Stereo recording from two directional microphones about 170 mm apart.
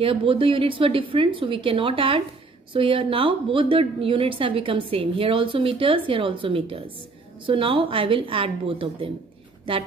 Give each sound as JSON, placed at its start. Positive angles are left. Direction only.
{"t": 0.0, "sound": "a woman's voice", "side_deg": -30}